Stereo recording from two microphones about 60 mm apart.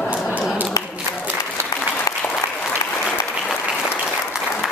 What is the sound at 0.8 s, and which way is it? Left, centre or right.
Applause, left.